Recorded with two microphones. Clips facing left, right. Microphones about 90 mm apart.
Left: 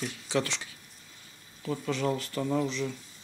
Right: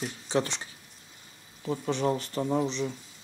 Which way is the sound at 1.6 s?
20° right (ahead or behind).